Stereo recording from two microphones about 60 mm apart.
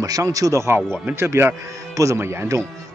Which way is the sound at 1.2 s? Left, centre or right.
Right.